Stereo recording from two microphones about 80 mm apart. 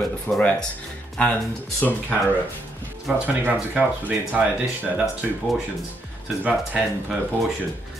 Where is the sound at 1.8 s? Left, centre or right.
Centre.